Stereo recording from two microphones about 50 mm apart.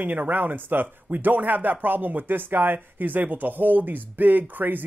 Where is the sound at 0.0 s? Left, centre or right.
Right.